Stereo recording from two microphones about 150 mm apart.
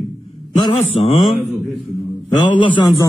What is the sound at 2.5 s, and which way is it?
Speech, 30° left (ahead or behind).